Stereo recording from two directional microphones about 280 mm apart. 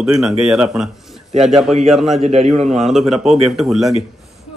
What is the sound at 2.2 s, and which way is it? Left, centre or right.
Speech, right.